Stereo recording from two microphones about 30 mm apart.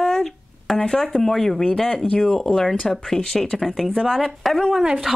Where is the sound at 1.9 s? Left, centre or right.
Left.